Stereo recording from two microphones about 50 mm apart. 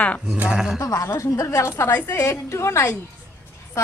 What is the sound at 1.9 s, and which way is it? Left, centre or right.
A woman's voice, left.